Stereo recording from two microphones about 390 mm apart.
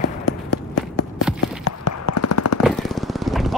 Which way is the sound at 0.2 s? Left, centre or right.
Left.